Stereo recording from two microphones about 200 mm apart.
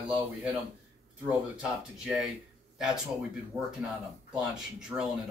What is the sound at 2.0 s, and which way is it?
Speech, 5° right (ahead or behind).